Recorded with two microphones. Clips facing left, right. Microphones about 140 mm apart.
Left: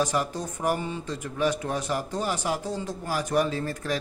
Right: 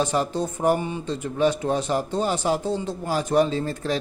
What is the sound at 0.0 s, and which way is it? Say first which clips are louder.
Speech: right 4 dB; 30° right (ahead or behind).